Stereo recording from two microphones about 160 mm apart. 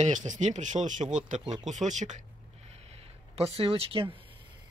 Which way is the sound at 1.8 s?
50° right (ahead or behind).